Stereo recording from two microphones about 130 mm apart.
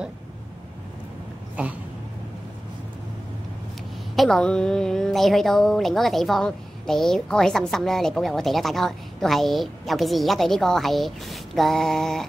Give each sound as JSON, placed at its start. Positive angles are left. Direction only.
{"t": 4.1, "sound": "speech", "side_deg": 0}